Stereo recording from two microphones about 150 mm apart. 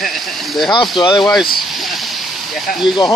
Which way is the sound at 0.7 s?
30° left (ahead or behind).